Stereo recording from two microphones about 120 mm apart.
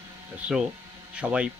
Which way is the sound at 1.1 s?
10° right (ahead or behind).